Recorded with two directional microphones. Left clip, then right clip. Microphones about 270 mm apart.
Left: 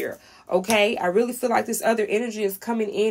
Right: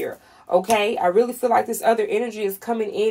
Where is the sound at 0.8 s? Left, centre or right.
Left.